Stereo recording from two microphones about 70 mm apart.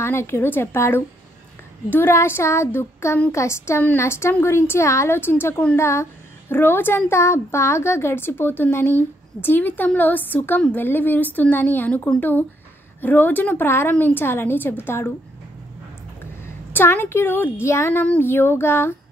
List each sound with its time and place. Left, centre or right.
0.0 s a woman's voice: left
6.5 s a woman's voice: left
16.7 s a woman's voice: left